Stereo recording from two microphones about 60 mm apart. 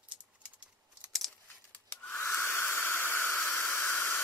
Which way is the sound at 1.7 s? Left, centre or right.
Left.